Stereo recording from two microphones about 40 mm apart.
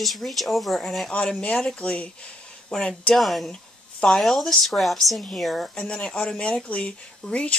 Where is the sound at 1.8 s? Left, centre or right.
Left.